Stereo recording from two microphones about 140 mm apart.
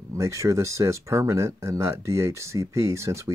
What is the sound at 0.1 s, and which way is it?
Speech, 20° right (ahead or behind).